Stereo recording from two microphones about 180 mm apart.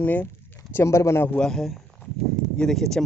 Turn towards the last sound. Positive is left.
turn(degrees=0)  # may be behind; listen again after turning